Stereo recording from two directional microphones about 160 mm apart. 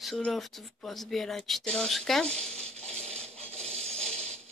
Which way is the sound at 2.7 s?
40° right (ahead or behind).